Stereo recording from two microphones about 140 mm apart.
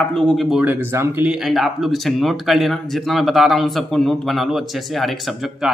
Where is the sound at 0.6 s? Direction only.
15° right (ahead or behind).